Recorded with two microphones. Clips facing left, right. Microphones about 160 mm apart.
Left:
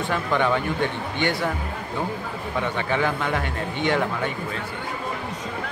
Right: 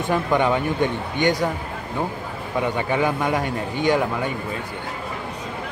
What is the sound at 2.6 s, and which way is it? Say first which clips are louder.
Speech: right 3 dB; 15° right (ahead or behind).